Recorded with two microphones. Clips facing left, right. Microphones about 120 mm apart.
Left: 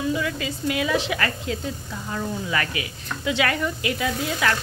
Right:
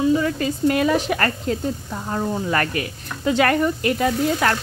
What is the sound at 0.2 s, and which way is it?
Speech, 45° right (ahead or behind).